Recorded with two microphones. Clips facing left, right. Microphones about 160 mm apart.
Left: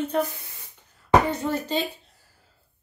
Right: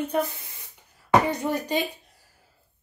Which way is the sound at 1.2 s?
15° right (ahead or behind).